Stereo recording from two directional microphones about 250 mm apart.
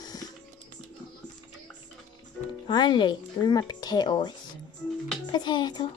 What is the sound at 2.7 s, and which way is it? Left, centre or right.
Speech, centre.